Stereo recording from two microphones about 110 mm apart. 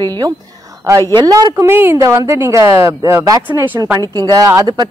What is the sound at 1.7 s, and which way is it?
Speech, 20° right (ahead or behind).